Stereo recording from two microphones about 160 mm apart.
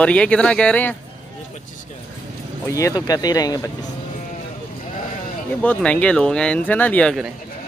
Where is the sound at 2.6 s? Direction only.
20° left (ahead or behind).